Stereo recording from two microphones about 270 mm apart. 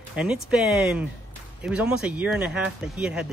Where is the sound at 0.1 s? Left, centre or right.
Centre.